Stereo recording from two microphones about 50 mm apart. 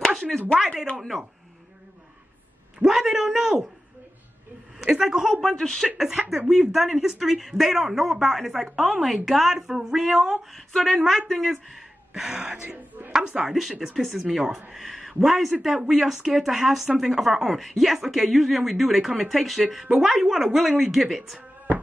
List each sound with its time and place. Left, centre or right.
0.6 s speech: centre
2.8 s a man's voice: centre
4.7 s a man's voice: centre
5.4 s speech: centre
5.9 s a man's voice: centre
12.4 s speech: right
13.1 s a man's voice: centre
13.5 s speech: centre